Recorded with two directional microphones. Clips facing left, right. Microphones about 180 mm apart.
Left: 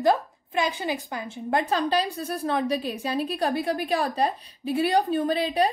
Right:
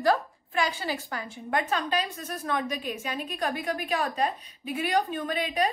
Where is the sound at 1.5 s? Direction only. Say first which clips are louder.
Left 4 dB; 30° left (ahead or behind).